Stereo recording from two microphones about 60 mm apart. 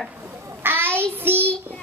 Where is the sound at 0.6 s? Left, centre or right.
Right.